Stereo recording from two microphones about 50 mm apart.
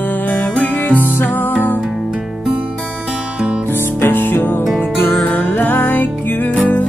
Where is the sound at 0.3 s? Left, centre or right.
Left.